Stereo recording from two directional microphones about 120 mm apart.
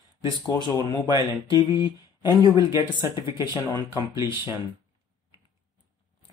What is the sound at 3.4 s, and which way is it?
Speech, 35° left (ahead or behind).